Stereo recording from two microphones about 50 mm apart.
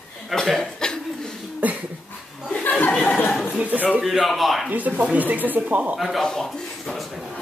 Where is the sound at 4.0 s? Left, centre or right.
Centre.